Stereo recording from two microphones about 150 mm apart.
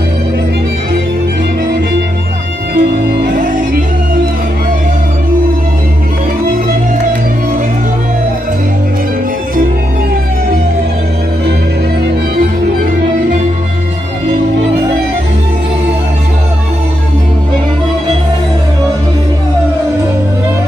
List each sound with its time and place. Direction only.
2.7 s music: 90° right